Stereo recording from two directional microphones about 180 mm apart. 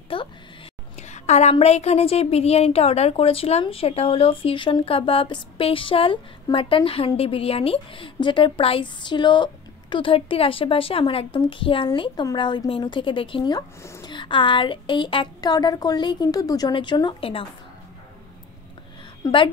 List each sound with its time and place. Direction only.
0.1 s a sound: 30° left (ahead or behind)
0.9 s a woman's voice: 40° left (ahead or behind)
19.2 s a woman's voice: 15° left (ahead or behind)